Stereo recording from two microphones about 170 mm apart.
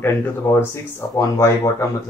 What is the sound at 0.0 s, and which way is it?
Speech, 15° left (ahead or behind).